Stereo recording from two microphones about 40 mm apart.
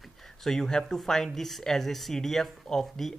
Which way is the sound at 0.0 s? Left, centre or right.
Centre.